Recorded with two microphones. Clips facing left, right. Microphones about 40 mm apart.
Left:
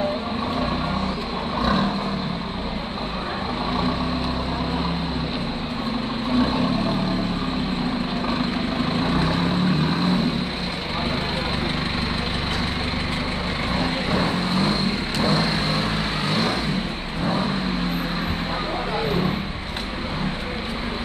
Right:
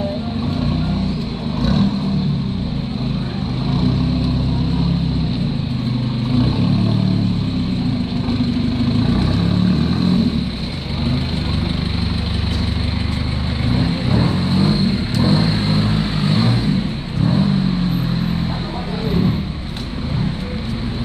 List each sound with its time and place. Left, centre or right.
1.6 s vehicle: centre
8.8 s vehicle: left